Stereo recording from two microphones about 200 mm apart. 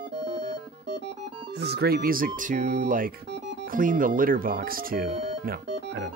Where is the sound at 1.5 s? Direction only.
55° right (ahead or behind).